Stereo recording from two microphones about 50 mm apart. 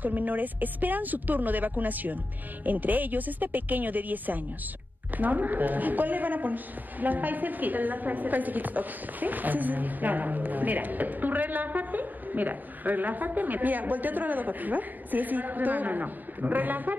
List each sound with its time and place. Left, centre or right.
0.0 s a woman's voice: right